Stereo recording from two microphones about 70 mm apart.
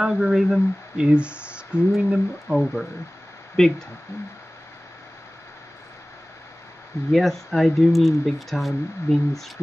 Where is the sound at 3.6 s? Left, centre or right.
Centre.